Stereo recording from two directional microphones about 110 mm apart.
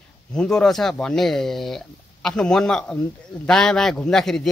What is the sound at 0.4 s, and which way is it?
A man's voice, 5° left (ahead or behind).